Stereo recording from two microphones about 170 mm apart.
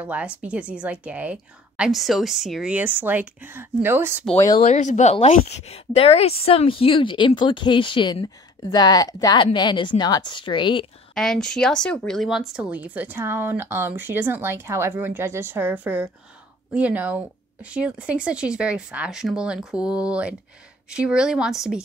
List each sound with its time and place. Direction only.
0.0 s speech: 10° right (ahead or behind)
4.6 s a woman's voice: 45° left (ahead or behind)
11.1 s speech: 5° left (ahead or behind)